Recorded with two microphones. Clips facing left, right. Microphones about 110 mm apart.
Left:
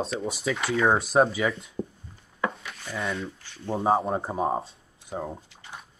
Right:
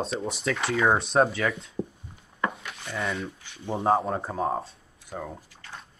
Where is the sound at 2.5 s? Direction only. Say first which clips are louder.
Even; centre (ahead or behind).